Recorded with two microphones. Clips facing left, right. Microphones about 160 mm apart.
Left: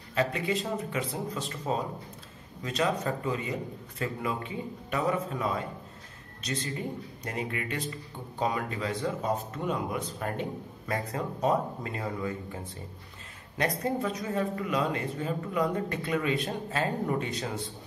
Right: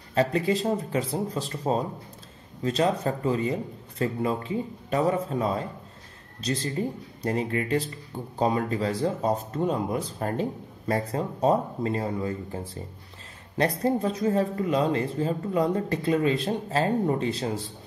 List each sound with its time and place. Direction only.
0.1 s speech: 35° right (ahead or behind)
13.6 s speech: 35° right (ahead or behind)